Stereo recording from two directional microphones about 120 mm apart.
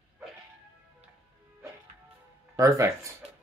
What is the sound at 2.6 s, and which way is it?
Speech, 25° right (ahead or behind).